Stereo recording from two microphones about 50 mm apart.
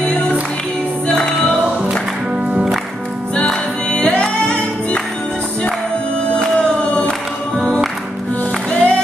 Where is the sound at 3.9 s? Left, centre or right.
Centre.